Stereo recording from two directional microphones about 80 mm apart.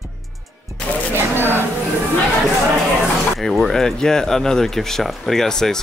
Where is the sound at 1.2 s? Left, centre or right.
Right.